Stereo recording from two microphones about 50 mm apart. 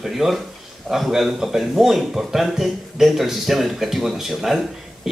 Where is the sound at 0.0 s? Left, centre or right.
Centre.